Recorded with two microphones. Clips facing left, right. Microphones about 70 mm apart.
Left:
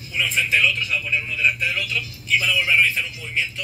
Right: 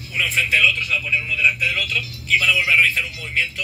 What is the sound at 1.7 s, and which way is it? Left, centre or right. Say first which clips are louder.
Speech: right 2 dB; right.